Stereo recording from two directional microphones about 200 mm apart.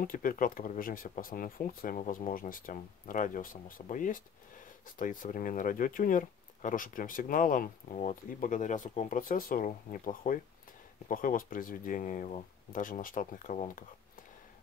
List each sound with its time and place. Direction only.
0.0 s speech: 45° left (ahead or behind)